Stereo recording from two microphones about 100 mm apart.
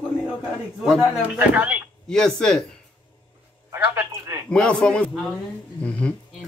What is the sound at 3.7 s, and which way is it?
Telephone, 25° right (ahead or behind).